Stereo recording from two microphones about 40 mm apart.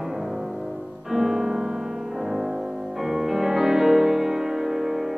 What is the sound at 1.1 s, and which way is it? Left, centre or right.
Music, centre.